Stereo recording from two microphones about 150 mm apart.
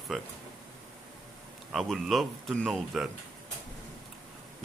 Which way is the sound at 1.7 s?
Centre (ahead or behind).